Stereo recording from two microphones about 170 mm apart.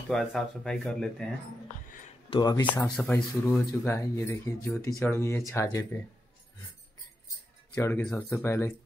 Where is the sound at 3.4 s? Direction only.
15° left (ahead or behind).